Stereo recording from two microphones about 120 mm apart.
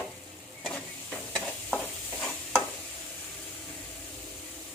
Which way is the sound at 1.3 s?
5° left (ahead or behind).